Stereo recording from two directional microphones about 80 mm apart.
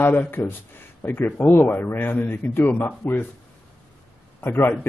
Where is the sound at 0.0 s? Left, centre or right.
Left.